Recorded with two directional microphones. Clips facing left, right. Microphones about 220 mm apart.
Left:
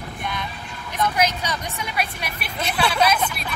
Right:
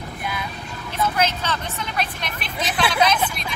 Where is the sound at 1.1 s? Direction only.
15° left (ahead or behind).